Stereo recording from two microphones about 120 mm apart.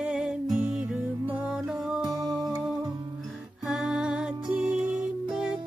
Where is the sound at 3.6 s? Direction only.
5° right (ahead or behind).